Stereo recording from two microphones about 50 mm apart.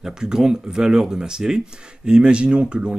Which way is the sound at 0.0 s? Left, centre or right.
Centre.